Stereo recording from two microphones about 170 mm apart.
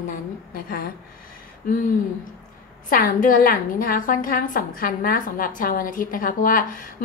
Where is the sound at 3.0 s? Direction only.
55° left (ahead or behind).